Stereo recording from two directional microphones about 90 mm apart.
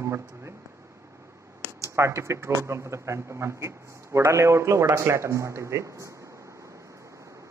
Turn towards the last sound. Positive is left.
turn(degrees=-35)  # may be behind; listen again after turning